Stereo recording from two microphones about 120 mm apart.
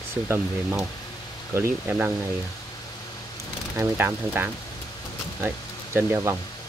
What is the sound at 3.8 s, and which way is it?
Speech, 20° right (ahead or behind).